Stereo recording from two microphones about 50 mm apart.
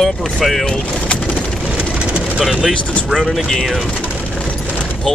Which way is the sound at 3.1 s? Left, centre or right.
Centre.